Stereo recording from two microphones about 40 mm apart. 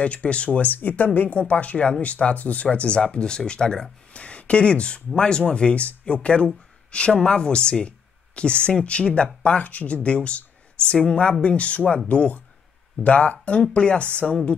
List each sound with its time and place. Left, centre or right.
0.0 s speech: left
0.6 s speech: left; by 3.9 s centre
4.1 s speech: left
13.6 s speech: left